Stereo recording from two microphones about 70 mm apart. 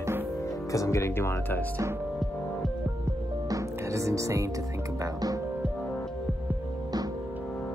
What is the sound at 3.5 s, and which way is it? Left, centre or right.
Music, right.